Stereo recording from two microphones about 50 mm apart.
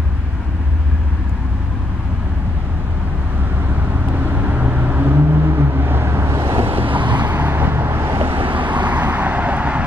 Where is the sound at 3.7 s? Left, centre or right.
Right.